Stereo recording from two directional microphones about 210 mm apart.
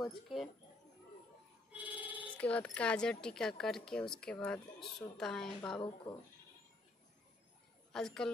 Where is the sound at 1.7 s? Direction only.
5° right (ahead or behind).